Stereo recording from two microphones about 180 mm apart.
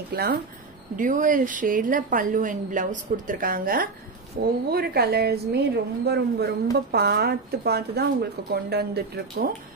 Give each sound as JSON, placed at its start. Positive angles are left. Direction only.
{"t": 0.1, "sound": "a woman's voice", "side_deg": -55}
{"t": 0.9, "sound": "a woman's voice", "side_deg": -45}